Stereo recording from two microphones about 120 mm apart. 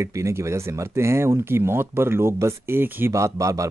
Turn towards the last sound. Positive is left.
turn(degrees=-25)  # may be behind; listen again after turning